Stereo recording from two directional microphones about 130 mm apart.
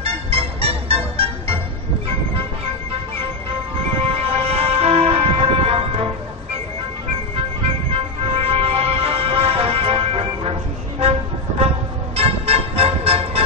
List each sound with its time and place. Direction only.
0.0 s music: 50° right (ahead or behind)
4.0 s music: 50° right (ahead or behind)
7.9 s music: 50° right (ahead or behind)
12.2 s music: 50° right (ahead or behind)